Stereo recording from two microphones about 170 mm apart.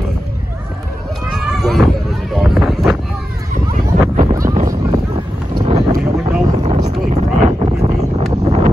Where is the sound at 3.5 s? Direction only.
55° right (ahead or behind).